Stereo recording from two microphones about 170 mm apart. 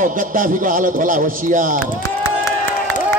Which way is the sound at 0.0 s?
55° right (ahead or behind).